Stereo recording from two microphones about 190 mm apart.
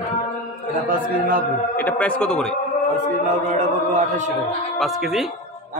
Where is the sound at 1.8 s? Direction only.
10° left (ahead or behind).